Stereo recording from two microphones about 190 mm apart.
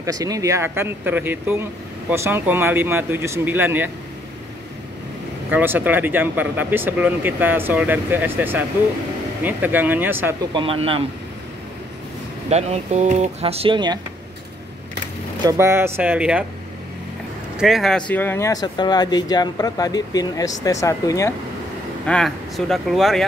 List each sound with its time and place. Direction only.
0.0 s speech: 20° right (ahead or behind)
5.5 s speech: 10° right (ahead or behind)
10.5 s speech: 30° right (ahead or behind)
12.4 s speech: 35° right (ahead or behind)
15.4 s speech: 15° right (ahead or behind)
17.6 s speech: centre (ahead or behind); by 21.3 s 15° left (ahead or behind)
22.0 s speech: 5° left (ahead or behind)